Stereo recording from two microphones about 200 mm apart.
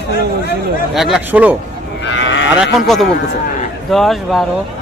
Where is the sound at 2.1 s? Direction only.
65° left (ahead or behind).